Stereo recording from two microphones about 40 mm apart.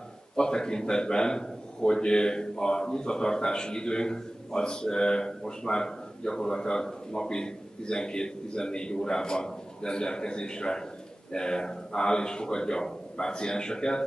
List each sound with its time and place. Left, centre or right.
0.4 s a man's voice: centre